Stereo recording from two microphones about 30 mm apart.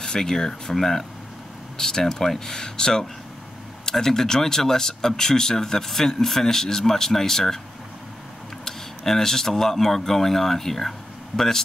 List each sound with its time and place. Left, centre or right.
0.0 s speech: centre
8.6 s speech: centre